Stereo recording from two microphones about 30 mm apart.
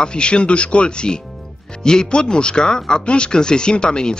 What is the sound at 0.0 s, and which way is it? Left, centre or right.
Speech, left.